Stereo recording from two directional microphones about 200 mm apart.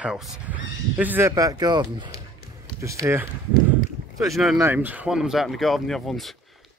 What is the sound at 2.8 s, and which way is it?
Speech, 15° right (ahead or behind).